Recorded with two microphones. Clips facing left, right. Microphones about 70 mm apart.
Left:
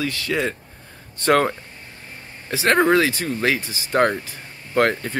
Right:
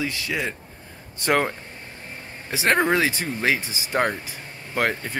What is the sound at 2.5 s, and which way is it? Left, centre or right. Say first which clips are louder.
Speech: left 4 dB; centre.